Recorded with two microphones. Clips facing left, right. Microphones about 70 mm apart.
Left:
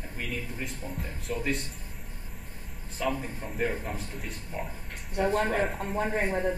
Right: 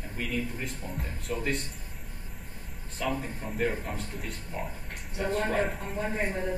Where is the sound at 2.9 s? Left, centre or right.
Centre.